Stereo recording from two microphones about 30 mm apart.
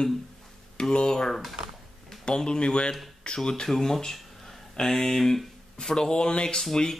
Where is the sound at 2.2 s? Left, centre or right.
Left.